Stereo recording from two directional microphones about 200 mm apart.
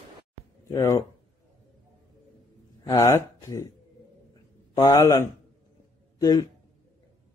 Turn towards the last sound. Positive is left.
turn(degrees=20)  # may be behind; listen again after turning